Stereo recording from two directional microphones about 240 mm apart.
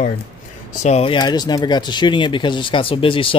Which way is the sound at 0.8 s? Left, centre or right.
Left.